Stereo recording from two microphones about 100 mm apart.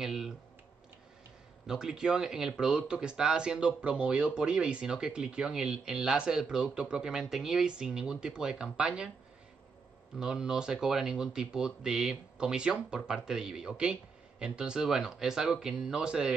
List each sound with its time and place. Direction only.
0.0 s clicking: 5° right (ahead or behind)
1.7 s speech: 5° right (ahead or behind)
10.1 s speech: 5° right (ahead or behind)